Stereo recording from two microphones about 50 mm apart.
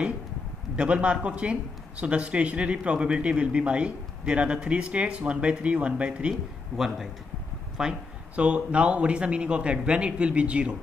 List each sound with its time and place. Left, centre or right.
0.7 s speech: right
7.8 s speech: centre
8.4 s speech: right